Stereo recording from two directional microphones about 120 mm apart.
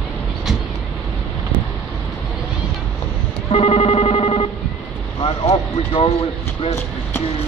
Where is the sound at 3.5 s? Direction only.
55° left (ahead or behind).